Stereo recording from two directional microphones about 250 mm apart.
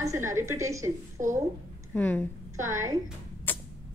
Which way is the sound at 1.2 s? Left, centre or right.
Right.